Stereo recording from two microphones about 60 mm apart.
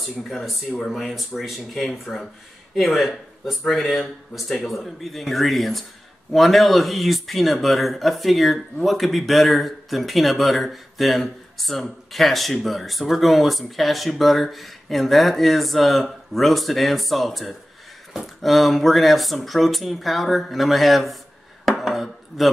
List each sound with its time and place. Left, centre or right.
0.0 s speech: centre
21.6 s chopping: centre